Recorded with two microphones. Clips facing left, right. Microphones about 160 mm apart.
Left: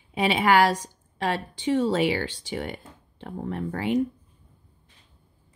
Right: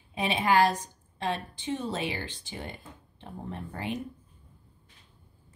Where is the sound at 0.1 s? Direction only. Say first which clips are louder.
Left 5 dB; 90° left.